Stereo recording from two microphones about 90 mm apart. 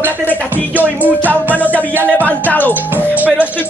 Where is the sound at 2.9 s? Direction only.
15° right (ahead or behind).